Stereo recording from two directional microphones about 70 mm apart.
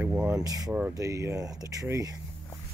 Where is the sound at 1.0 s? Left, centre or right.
Right.